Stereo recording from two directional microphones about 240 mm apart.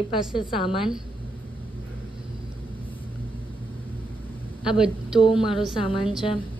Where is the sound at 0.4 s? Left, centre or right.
Left.